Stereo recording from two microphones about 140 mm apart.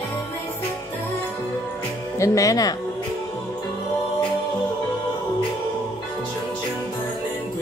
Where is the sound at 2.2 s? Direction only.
25° left (ahead or behind).